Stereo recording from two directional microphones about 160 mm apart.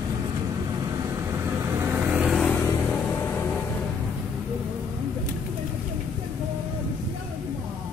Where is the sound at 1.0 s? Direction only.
15° right (ahead or behind).